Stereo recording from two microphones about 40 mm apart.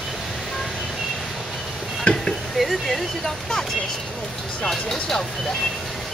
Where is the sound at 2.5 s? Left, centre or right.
Centre.